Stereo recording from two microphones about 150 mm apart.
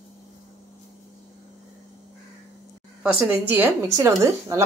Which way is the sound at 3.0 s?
5° right (ahead or behind).